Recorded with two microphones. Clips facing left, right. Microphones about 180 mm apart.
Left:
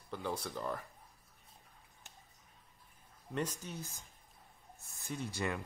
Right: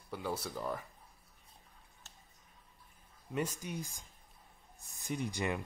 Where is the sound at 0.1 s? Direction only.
5° right (ahead or behind).